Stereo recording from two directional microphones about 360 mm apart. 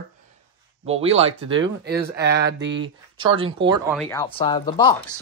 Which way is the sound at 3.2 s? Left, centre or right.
Centre.